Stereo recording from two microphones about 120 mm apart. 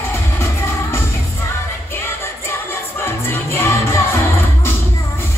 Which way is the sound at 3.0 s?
20° left (ahead or behind).